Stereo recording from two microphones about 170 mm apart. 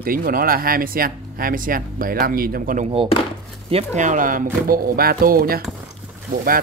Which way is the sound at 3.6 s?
40° right (ahead or behind).